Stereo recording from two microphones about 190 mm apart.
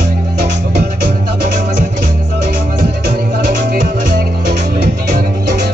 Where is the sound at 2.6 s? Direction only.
50° right (ahead or behind).